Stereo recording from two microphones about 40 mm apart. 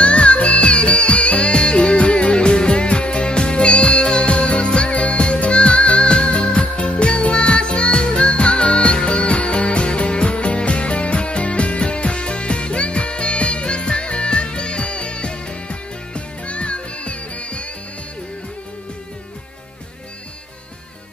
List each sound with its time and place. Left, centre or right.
0.0 s music: left